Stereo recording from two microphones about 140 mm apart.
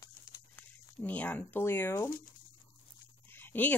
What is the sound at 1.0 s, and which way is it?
Speech, 10° left (ahead or behind).